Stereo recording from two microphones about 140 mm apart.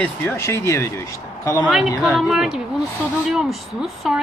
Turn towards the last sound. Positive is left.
turn(degrees=0)  # may be behind; listen again after turning